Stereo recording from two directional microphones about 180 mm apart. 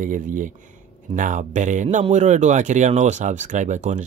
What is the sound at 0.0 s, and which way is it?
Speech, 45° right (ahead or behind).